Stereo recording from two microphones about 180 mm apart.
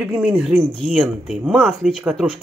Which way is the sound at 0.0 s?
10° right (ahead or behind).